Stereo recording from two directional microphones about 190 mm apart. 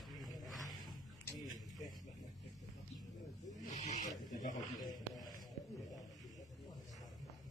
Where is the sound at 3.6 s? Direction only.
40° left (ahead or behind).